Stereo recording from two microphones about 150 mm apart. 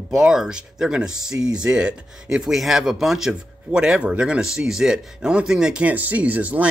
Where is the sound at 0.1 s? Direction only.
5° right (ahead or behind).